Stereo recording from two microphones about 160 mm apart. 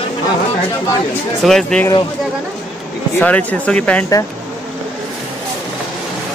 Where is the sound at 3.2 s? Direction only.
10° left (ahead or behind).